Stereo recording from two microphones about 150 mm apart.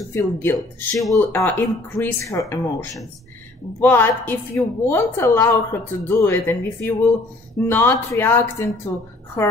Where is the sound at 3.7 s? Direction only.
15° left (ahead or behind).